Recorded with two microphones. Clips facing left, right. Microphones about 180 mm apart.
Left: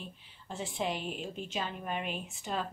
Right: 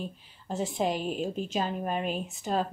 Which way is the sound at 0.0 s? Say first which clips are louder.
Right 9 dB; 40° right (ahead or behind).